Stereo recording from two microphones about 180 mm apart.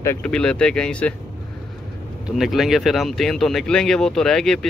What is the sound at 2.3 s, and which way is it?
Speech, centre (ahead or behind).